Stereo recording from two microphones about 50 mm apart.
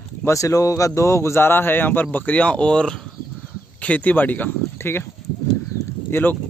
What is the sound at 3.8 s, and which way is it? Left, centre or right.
Speech, left.